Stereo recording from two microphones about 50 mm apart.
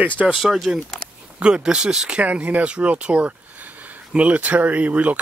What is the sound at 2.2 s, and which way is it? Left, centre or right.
Speech, right.